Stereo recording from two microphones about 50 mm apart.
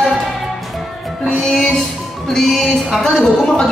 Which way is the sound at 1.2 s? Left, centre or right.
Centre.